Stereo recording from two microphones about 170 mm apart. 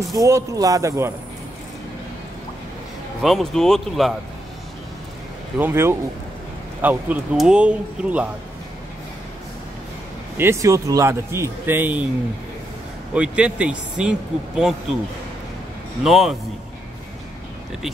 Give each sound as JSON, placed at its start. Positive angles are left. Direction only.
{"t": 0.1, "sound": "speech", "side_deg": -20}
{"t": 3.2, "sound": "speech", "side_deg": 0}
{"t": 5.6, "sound": "a man's voice", "side_deg": -15}
{"t": 10.3, "sound": "a man's voice", "side_deg": -15}
{"t": 13.1, "sound": "a man's voice", "side_deg": -5}
{"t": 16.0, "sound": "speech", "side_deg": -5}